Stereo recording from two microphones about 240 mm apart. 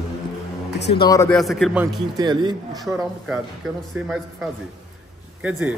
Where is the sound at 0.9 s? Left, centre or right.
Centre.